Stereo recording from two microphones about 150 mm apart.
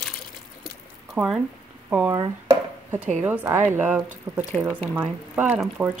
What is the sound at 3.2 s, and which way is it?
Speech, 10° right (ahead or behind).